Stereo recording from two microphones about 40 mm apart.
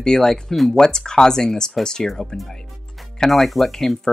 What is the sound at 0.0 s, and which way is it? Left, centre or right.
Speech, centre.